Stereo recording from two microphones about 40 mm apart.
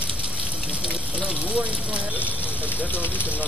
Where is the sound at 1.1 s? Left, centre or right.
Right.